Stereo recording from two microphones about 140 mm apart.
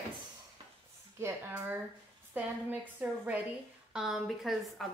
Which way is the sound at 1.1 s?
15° right (ahead or behind).